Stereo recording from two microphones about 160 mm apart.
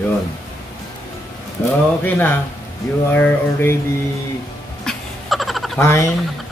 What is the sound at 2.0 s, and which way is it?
Speech, 10° left (ahead or behind).